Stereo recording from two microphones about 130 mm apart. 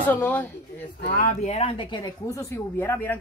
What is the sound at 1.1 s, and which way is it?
Speech, 85° left.